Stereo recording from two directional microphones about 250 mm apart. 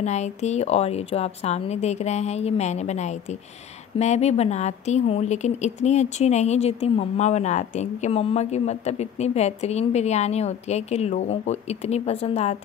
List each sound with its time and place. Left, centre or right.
0.0 s speech: left